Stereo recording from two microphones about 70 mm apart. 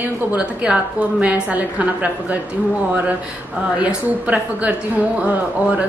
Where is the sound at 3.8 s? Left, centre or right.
Right.